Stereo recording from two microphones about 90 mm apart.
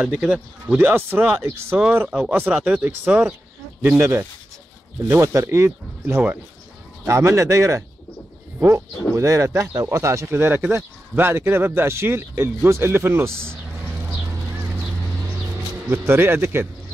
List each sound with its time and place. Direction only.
0.0 s speech: 10° right (ahead or behind); by 1.8 s 30° right (ahead or behind)
2.5 s speech: 15° right (ahead or behind)
3.9 s speech: 30° right (ahead or behind)
15.9 s speech: 25° right (ahead or behind)